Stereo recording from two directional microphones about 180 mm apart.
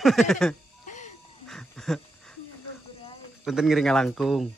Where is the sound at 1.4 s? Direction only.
5° left (ahead or behind).